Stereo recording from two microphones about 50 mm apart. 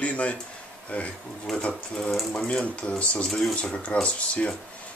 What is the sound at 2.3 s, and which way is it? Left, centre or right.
Speech, centre.